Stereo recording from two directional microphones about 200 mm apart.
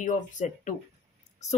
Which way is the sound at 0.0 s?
40° left (ahead or behind).